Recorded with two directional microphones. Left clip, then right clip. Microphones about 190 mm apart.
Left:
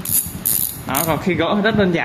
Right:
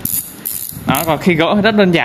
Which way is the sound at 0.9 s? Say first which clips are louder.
Right 5 dB; 45° right (ahead or behind).